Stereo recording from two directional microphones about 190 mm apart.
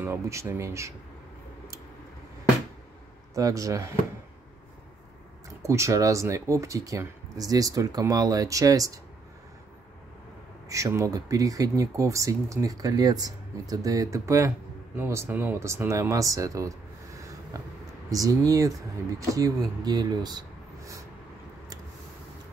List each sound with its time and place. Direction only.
0.0 s speech: 15° right (ahead or behind)
3.3 s speech: 15° right (ahead or behind)
5.6 s speech: 15° right (ahead or behind)
10.7 s speech: 15° right (ahead or behind)